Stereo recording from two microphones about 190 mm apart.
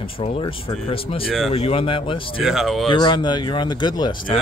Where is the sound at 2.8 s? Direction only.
25° left (ahead or behind).